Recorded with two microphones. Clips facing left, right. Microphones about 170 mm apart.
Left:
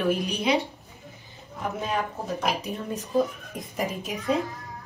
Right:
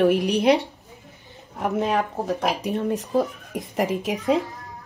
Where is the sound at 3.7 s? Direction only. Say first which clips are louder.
Right 6 dB; 85° right.